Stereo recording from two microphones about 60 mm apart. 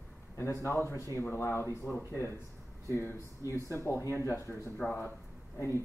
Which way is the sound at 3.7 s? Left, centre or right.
Left.